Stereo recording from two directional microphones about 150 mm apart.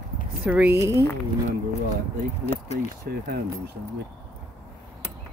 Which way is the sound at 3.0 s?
90° right.